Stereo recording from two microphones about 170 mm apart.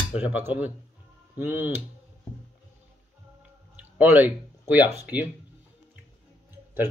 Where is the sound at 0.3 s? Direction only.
10° right (ahead or behind).